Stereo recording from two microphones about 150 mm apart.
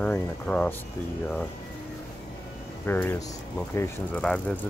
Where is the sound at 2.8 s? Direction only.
15° left (ahead or behind).